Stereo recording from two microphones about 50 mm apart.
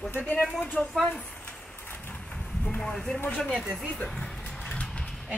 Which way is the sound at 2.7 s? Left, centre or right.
Centre.